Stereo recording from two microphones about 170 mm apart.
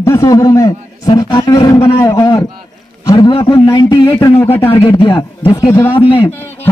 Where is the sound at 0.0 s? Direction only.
15° left (ahead or behind).